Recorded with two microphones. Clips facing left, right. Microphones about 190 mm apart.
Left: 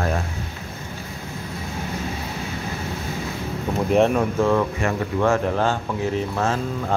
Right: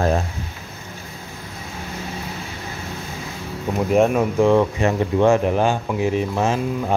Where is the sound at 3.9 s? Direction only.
5° right (ahead or behind).